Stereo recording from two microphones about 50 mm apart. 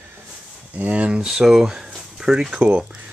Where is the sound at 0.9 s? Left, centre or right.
Right.